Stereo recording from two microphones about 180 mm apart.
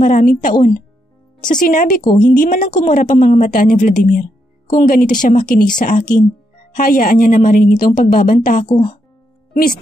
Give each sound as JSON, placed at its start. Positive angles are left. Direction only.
{"t": 0.0, "sound": "a woman's voice", "side_deg": 40}
{"t": 2.0, "sound": "a woman's voice", "side_deg": 25}
{"t": 2.3, "sound": "a woman's voice", "side_deg": 45}
{"t": 8.6, "sound": "speech", "side_deg": 30}